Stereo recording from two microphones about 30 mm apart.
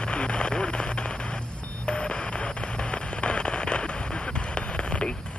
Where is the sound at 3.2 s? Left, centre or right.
Left.